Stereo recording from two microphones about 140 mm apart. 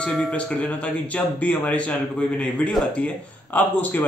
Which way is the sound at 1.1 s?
10° left (ahead or behind).